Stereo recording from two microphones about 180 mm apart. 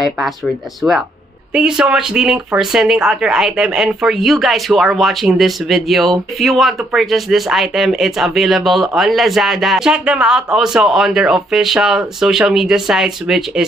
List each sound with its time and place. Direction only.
0.8 s speech: 10° right (ahead or behind)